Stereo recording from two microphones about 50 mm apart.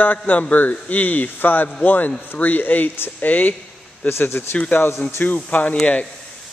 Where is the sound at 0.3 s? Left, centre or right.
Left.